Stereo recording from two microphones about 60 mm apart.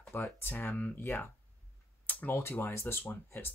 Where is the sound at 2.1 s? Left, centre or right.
Left.